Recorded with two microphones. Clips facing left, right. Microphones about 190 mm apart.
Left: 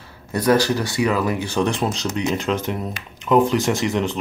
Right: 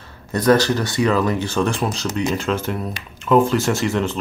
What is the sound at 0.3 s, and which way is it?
Speech, 10° left (ahead or behind).